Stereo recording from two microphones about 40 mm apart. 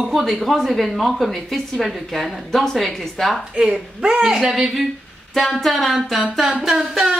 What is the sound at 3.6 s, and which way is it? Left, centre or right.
Speech, right.